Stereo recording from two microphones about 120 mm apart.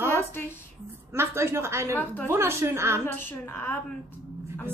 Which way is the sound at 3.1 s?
15° left (ahead or behind).